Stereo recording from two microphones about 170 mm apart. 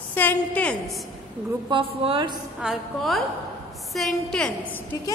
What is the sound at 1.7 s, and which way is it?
Speech, 30° right (ahead or behind).